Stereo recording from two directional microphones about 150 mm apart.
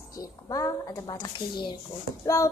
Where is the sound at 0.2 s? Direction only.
25° left (ahead or behind).